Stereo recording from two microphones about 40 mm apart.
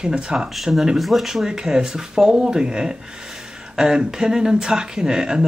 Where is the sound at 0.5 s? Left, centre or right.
Centre.